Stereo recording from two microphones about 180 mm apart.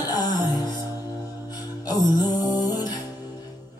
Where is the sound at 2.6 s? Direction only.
20° left (ahead or behind).